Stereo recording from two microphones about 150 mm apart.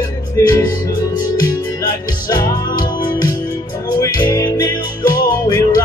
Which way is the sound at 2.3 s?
25° left (ahead or behind).